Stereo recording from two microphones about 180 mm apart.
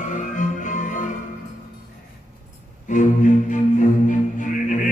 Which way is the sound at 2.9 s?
45° left (ahead or behind).